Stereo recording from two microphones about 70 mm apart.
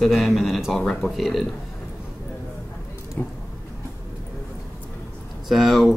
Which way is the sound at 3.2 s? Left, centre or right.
Left.